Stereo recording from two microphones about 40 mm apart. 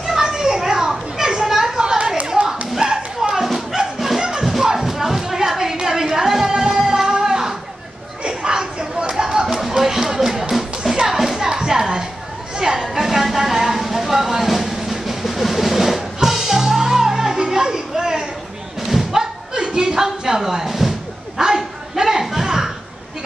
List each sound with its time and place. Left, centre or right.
0.0 s children playing: centre
1.8 s a sound: centre
2.8 s bow-wow: centre
3.8 s music: centre
7.1 s a sound: centre
10.8 s music: centre
12.5 s a sound: centre
12.9 s music: centre
18.9 s thump: centre
19.5 s chuckle: centre
21.4 s bow-wow: centre